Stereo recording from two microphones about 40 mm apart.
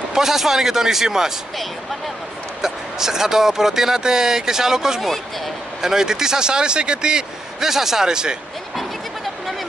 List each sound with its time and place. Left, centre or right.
0.1 s speech: centre
2.6 s speech: centre
5.0 s speech: centre
5.8 s speech: centre
8.7 s a sound: centre